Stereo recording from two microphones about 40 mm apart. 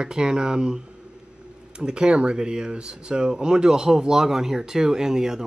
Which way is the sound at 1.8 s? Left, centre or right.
Right.